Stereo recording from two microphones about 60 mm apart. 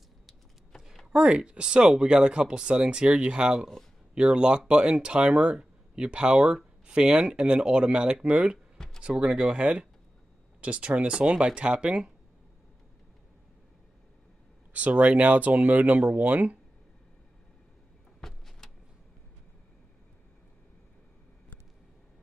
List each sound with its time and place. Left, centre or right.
0.3 s a sound: centre
1.1 s speech: centre
8.7 s a sound: centre
9.0 s speech: centre
14.7 s speech: right
18.2 s vehicle: centre